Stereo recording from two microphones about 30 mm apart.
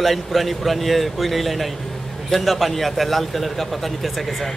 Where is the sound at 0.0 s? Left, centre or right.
Centre.